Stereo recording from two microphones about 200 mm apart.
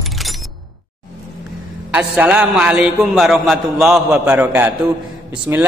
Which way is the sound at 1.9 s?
5° right (ahead or behind).